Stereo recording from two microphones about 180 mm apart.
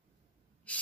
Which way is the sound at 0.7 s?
5° left (ahead or behind).